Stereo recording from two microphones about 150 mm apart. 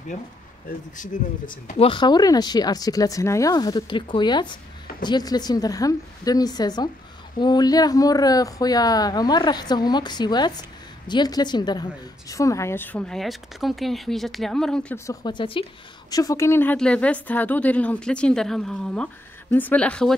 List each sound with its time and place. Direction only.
0.1 s speech: 50° left (ahead or behind)
0.7 s speech: 60° left (ahead or behind)
1.8 s a woman's voice: 30° left (ahead or behind); by 15.0 s 5° left (ahead or behind)
15.0 s a woman's voice: 30° left (ahead or behind); by 20.2 s 5° left (ahead or behind)